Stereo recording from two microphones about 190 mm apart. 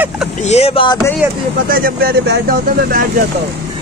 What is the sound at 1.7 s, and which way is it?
Speech, 50° right (ahead or behind).